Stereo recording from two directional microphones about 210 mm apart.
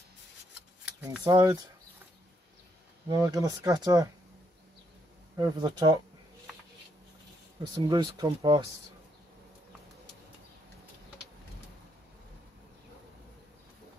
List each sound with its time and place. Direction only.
1.2 s speech: 15° right (ahead or behind)
3.1 s speech: 15° right (ahead or behind)
5.3 s speech: 20° right (ahead or behind)
7.7 s speech: 20° right (ahead or behind)